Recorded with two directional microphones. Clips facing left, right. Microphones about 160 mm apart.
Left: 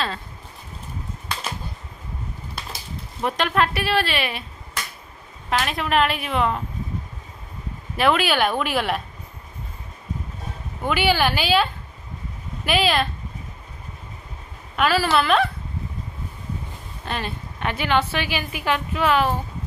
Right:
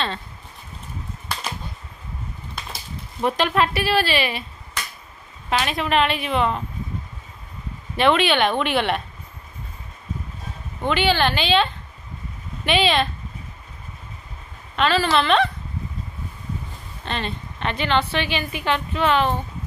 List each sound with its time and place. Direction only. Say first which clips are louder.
3.2 s a woman's voice: right 1 dB; centre (ahead or behind)
5.5 s a woman's voice: right 1 dB; centre (ahead or behind)
7.9 s a woman's voice: right 2 dB; 5° left (ahead or behind)
10.8 s a woman's voice: right 1 dB; 10° left (ahead or behind)
14.8 s a woman's voice: even; 5° left (ahead or behind)
17.0 s a woman's voice: right 1 dB; 5° left (ahead or behind)